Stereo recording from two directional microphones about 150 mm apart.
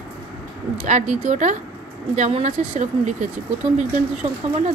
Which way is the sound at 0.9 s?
50° right (ahead or behind).